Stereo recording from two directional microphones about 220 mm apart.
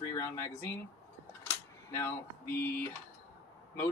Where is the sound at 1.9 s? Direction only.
10° left (ahead or behind).